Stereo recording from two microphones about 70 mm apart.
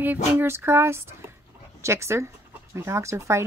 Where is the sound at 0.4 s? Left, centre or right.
Right.